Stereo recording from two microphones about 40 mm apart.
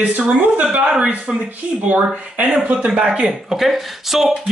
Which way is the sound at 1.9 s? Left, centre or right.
Right.